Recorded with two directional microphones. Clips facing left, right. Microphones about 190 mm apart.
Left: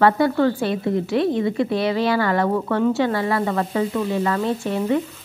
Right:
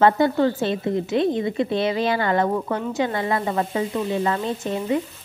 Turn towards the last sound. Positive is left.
turn(degrees=-20)  # may be behind; listen again after turning